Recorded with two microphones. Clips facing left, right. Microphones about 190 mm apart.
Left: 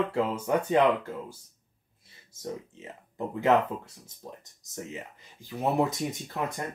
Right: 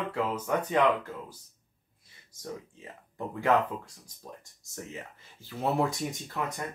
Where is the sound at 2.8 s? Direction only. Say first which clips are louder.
Left 5 dB; 20° left (ahead or behind).